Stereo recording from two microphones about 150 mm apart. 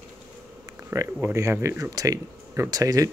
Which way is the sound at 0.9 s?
20° right (ahead or behind).